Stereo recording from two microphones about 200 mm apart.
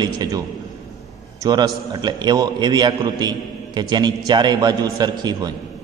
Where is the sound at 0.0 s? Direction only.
20° right (ahead or behind).